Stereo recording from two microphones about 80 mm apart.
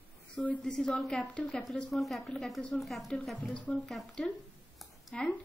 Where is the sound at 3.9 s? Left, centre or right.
Centre.